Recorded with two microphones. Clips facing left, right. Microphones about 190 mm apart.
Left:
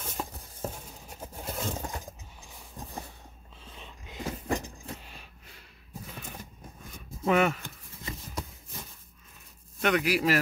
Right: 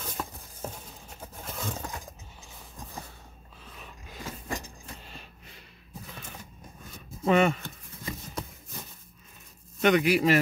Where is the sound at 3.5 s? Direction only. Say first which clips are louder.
Even; 25° left (ahead or behind).